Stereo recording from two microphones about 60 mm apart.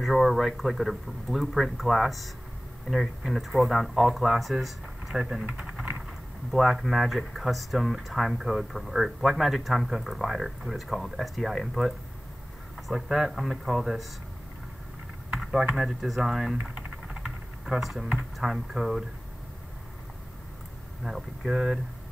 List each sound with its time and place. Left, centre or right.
0.0 s speech: centre
5.5 s typing: centre
6.5 s speech: centre
15.7 s speech: centre
16.7 s typing: centre
18.1 s speech: centre
21.0 s speech: centre